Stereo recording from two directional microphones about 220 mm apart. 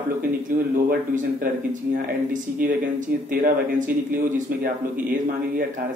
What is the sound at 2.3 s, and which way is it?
A man's voice, 35° right (ahead or behind).